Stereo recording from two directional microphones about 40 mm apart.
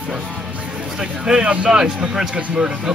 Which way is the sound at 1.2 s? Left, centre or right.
Right.